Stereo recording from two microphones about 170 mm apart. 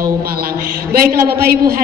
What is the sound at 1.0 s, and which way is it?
Speech, 60° right (ahead or behind).